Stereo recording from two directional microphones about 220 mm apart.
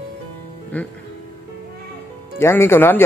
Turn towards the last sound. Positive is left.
turn(degrees=10)  # may be behind; listen again after turning